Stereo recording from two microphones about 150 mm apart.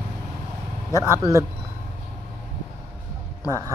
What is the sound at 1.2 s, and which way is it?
Speech, 20° right (ahead or behind).